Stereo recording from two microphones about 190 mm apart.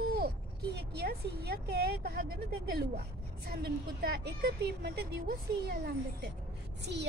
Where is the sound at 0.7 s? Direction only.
60° right (ahead or behind).